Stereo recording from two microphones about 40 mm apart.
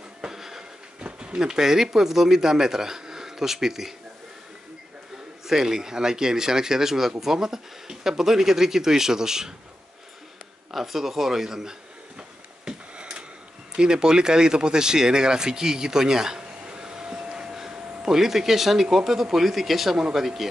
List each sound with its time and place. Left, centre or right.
0.2 s a sound: centre
1.0 s speech: right
5.5 s speech: centre
10.7 s speech: centre
12.2 s a sound: right
13.7 s speech: right